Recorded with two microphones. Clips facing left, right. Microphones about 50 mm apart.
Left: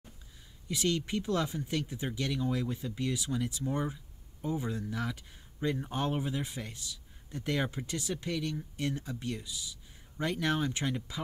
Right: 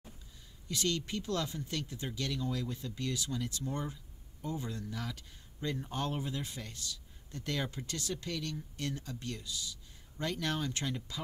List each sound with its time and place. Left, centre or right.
0.7 s speech: centre